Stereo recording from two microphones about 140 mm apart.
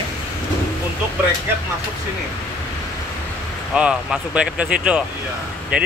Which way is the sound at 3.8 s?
5° right (ahead or behind).